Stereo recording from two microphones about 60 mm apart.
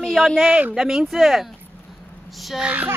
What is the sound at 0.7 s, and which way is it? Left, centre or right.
Speech, centre.